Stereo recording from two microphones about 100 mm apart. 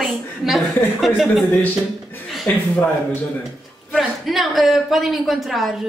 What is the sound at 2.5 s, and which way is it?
Speech, 20° left (ahead or behind).